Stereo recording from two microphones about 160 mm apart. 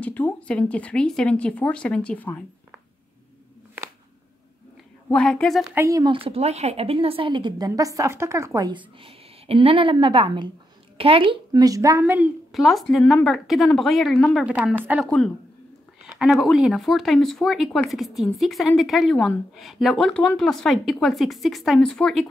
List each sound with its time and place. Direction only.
0.0 s speech: 10° left (ahead or behind)
5.1 s speech: 5° left (ahead or behind)
5.8 s speech: 20° right (ahead or behind)
6.1 s a woman's voice: 35° right (ahead or behind); by 12.3 s 15° right (ahead or behind)
12.5 s speech: centre (ahead or behind)
15.0 s speech: 5° left (ahead or behind)